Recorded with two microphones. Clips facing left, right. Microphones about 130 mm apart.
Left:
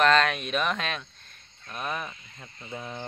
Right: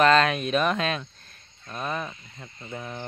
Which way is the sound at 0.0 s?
Centre (ahead or behind).